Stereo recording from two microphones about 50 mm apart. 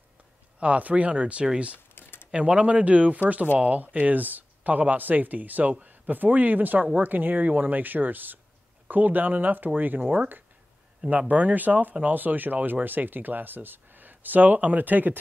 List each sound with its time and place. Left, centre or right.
0.6 s speech: right
2.0 s a sound: left
2.3 s speech: right